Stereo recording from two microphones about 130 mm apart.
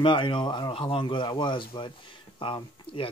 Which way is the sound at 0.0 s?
40° left (ahead or behind).